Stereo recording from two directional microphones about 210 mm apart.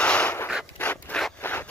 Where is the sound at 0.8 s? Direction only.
5° left (ahead or behind).